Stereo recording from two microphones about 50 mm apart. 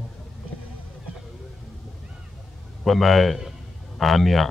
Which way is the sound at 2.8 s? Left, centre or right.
Centre.